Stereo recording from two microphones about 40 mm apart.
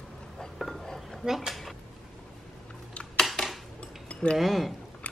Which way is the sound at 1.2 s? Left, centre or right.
Centre.